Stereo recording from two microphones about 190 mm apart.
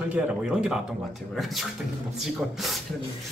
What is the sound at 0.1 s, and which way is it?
Speech, 5° right (ahead or behind).